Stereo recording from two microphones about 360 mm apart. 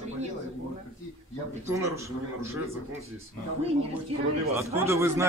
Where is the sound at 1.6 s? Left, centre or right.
Centre.